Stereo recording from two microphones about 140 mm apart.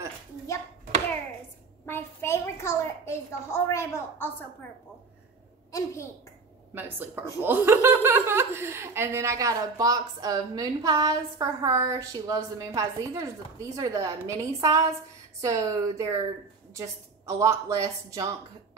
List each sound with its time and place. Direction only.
1.9 s a woman's voice: 15° left (ahead or behind)
5.7 s a woman's voice: 25° left (ahead or behind)
6.7 s a woman's voice: 15° right (ahead or behind)